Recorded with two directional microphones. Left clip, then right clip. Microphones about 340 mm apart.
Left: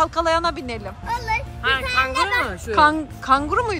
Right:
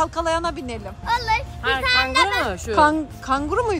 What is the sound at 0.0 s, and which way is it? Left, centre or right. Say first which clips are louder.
Speech: left 3 dB; centre.